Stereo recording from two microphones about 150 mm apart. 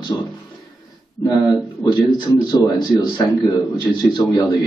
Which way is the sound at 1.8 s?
30° left (ahead or behind).